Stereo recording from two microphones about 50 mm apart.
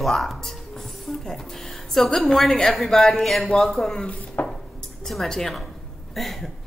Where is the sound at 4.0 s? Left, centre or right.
Left.